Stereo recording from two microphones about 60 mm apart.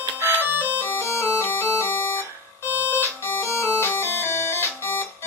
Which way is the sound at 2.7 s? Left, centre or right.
Left.